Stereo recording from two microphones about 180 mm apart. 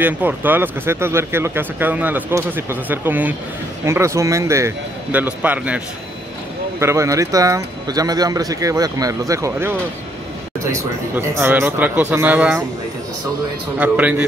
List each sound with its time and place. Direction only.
0.0 s speech: 10° right (ahead or behind)
6.8 s speech: 15° right (ahead or behind)
13.7 s speech: 10° right (ahead or behind)